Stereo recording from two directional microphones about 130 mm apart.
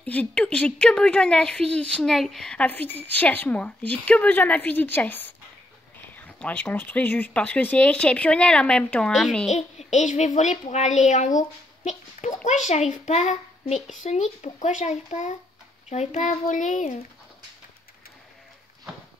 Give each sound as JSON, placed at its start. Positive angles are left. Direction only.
{"t": 0.0, "sound": "speech", "side_deg": 10}
{"t": 9.5, "sound": "a child's voice", "side_deg": 60}